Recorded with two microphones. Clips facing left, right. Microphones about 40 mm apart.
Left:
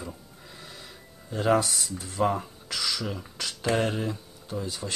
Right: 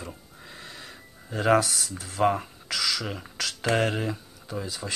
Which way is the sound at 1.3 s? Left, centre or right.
Right.